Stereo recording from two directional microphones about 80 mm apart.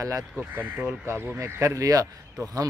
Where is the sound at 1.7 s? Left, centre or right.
Right.